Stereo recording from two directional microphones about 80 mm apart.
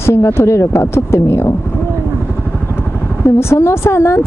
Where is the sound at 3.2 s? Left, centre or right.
Left.